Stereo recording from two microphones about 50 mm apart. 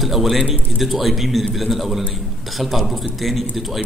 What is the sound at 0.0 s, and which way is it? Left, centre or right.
Speech, centre.